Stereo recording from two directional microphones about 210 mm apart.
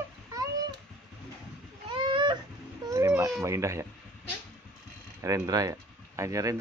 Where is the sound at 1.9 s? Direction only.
20° right (ahead or behind).